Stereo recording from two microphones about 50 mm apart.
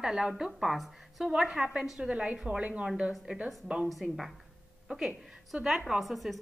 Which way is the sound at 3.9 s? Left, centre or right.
Centre.